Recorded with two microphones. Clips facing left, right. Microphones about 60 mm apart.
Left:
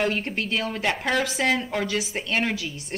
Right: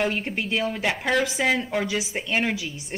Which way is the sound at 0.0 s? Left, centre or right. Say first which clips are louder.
Even; centre.